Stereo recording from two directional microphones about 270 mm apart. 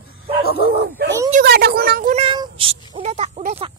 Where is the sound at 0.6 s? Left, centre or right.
Right.